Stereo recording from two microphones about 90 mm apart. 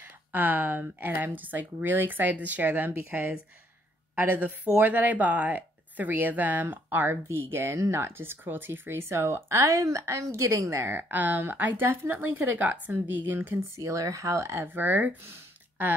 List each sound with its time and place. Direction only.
0.0 s a woman's voice: 20° right (ahead or behind)
13.7 s speech: 40° right (ahead or behind); by 15.3 s 20° right (ahead or behind)